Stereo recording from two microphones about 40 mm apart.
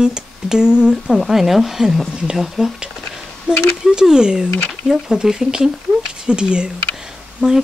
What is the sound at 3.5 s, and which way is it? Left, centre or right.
Speech, right.